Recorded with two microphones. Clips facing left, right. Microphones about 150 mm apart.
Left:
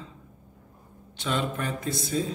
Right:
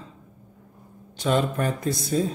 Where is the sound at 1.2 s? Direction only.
45° right (ahead or behind).